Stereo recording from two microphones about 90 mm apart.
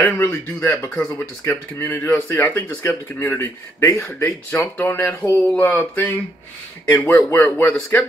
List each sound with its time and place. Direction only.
0.2 s speech: 25° left (ahead or behind)
3.3 s speech: 30° left (ahead or behind)
7.5 s speech: 15° left (ahead or behind)